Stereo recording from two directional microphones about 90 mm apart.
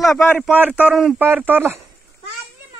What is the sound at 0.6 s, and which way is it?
Speech, 20° right (ahead or behind).